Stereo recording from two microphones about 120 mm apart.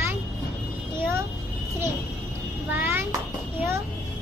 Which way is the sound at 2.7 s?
15° right (ahead or behind).